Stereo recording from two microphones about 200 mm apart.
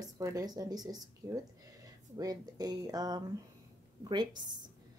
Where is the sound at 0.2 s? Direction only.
15° right (ahead or behind).